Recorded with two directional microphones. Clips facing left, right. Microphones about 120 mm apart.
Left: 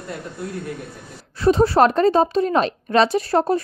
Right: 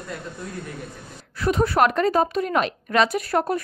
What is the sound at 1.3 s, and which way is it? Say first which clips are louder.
A woman's voice: left 5 dB; 30° left (ahead or behind).